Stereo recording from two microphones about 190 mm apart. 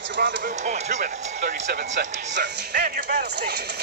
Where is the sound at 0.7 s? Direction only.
40° right (ahead or behind).